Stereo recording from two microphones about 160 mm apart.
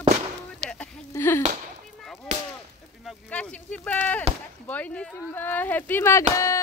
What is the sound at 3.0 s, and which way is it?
Speech, 5° left (ahead or behind).